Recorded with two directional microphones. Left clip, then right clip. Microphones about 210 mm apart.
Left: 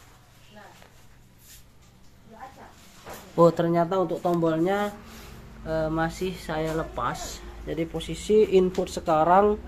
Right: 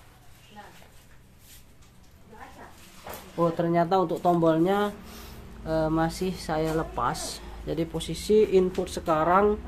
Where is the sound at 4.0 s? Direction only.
15° right (ahead or behind).